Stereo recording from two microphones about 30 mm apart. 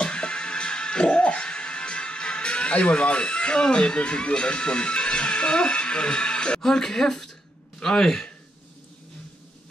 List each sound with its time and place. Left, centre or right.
0.0 s music: left
6.6 s speech: centre